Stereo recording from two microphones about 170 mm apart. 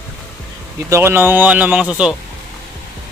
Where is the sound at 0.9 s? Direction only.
15° right (ahead or behind).